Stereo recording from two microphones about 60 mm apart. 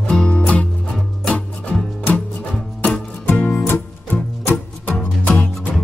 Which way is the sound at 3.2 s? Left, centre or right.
Left.